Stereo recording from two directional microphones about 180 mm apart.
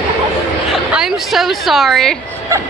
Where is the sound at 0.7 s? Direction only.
Centre (ahead or behind).